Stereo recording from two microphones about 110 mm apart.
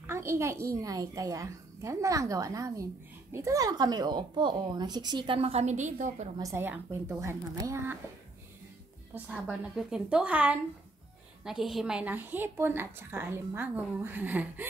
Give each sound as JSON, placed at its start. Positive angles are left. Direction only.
{"t": 0.0, "sound": "a woman's voice", "side_deg": -25}
{"t": 6.5, "sound": "a woman's voice", "side_deg": -20}
{"t": 9.1, "sound": "a woman's voice", "side_deg": -5}